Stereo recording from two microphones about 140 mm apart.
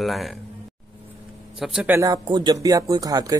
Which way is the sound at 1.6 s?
Centre (ahead or behind).